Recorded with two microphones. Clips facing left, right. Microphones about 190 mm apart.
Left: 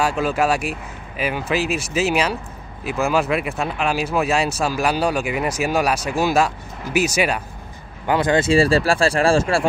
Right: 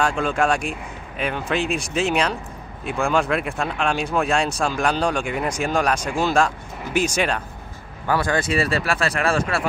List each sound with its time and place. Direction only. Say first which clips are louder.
0.0 s speech: left 1 dB; 5° left (ahead or behind)
8.1 s speech: left 5 dB; 20° left (ahead or behind)